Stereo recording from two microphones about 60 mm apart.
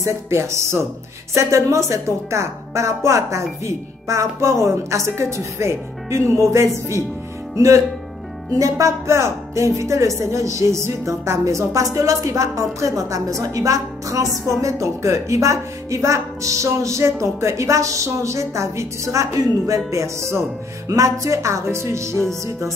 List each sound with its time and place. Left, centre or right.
0.0 s a woman's voice: right
14.6 s a woman's voice: right
20.9 s a woman's voice: right